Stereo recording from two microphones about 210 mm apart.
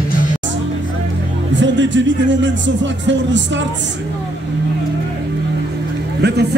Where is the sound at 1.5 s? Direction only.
60° right (ahead or behind).